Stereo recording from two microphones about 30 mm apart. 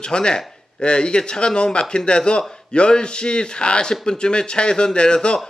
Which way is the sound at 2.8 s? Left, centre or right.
Left.